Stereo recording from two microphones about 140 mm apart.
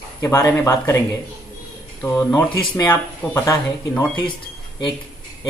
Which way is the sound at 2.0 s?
15° left (ahead or behind).